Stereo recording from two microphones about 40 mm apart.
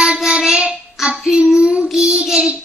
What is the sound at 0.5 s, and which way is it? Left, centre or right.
Child singing, right.